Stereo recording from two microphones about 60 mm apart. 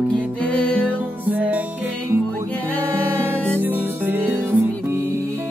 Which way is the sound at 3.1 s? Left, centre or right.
Right.